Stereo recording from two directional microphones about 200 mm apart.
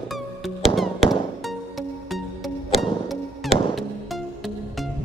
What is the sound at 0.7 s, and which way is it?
Music, centre (ahead or behind).